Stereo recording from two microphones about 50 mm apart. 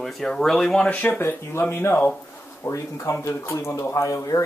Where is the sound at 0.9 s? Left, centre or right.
Left.